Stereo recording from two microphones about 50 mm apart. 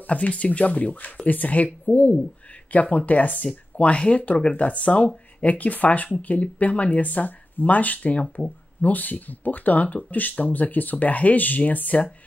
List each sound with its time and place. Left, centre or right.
0.0 s speech: left